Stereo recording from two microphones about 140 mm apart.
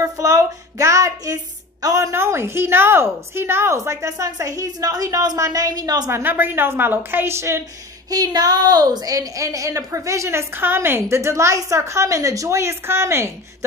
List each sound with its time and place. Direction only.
0.0 s a woman's voice: 20° right (ahead or behind)